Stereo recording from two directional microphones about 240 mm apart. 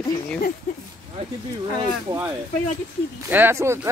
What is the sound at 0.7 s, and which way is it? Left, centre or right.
Speech, left.